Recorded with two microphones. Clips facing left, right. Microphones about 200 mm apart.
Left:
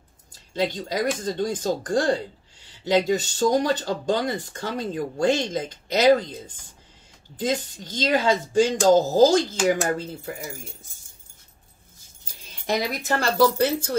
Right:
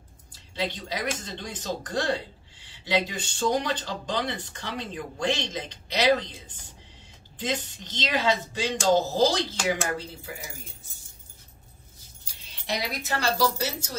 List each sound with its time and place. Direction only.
0.3 s speech: 45° left (ahead or behind)
7.3 s speech: 45° left (ahead or behind)
12.6 s speech: 50° left (ahead or behind)